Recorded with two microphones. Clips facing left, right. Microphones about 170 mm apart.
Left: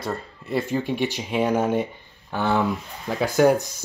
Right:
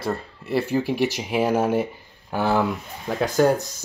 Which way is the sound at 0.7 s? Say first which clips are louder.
Right 2 dB; 5° right (ahead or behind).